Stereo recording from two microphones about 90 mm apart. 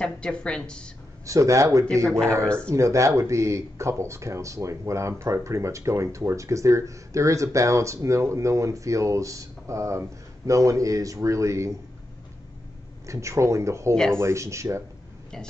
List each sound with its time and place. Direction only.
0.0 s a woman's voice: 10° left (ahead or behind)
1.2 s speech: 35° right (ahead or behind)
2.0 s a woman's voice: 5° left (ahead or behind)
2.7 s speech: 35° right (ahead or behind)
13.0 s speech: 35° right (ahead or behind)